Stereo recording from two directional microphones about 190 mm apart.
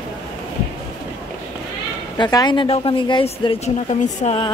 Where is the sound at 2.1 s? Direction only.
20° left (ahead or behind).